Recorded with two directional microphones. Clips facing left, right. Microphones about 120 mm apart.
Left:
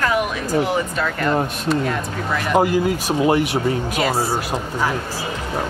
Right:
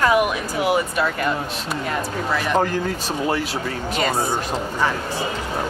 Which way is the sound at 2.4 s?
10° left (ahead or behind).